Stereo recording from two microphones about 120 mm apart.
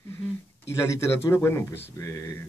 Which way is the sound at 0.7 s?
20° left (ahead or behind).